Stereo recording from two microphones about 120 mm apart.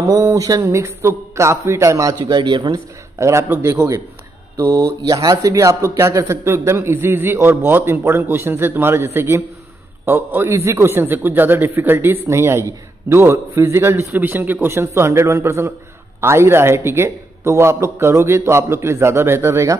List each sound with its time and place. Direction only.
0.0 s a man's voice: 30° right (ahead or behind)
3.2 s a man's voice: 25° right (ahead or behind)